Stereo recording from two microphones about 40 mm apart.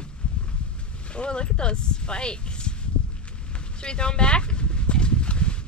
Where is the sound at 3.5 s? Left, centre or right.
Left.